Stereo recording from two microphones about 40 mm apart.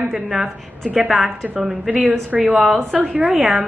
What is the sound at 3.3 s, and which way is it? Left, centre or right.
Speech, centre.